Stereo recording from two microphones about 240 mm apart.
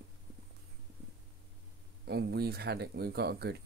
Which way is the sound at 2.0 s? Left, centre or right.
Right.